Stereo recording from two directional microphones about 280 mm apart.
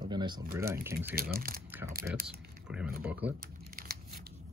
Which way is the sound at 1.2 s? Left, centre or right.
Right.